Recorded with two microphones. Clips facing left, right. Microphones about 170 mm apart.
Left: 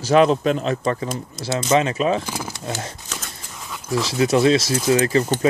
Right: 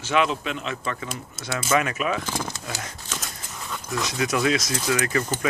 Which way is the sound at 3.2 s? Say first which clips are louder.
Even; 5° left (ahead or behind).